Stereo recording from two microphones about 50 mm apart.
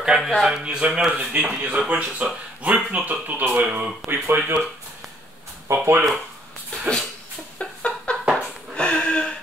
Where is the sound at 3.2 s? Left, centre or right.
Right.